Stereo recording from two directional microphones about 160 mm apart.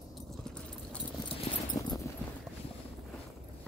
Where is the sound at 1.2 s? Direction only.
30° left (ahead or behind).